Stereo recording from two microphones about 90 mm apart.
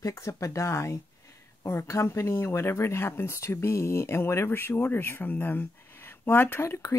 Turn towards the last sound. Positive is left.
turn(degrees=35)  # may be behind; listen again after turning